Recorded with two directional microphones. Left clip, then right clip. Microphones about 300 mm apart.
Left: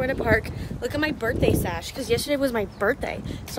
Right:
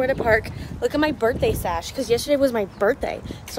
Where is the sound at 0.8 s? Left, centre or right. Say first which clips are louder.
Right 5 dB; centre.